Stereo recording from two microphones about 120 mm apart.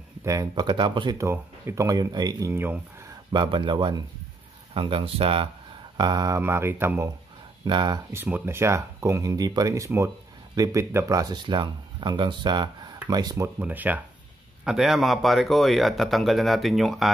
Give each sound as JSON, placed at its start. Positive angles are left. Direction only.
{"t": 0.2, "sound": "speech", "side_deg": -30}
{"t": 1.1, "sound": "speech", "side_deg": -25}
{"t": 2.5, "sound": "speech", "side_deg": -20}
{"t": 3.3, "sound": "speech", "side_deg": -40}
{"t": 5.9, "sound": "speech", "side_deg": -35}
{"t": 6.4, "sound": "speech", "side_deg": -20}
{"t": 7.6, "sound": "speech", "side_deg": -40}
{"t": 8.1, "sound": "speech", "side_deg": -20}
{"t": 13.6, "sound": "speech", "side_deg": -15}
{"t": 14.6, "sound": "speech", "side_deg": -5}